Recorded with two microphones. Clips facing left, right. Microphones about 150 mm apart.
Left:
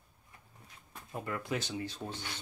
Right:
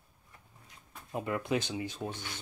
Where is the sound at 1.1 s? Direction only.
20° right (ahead or behind).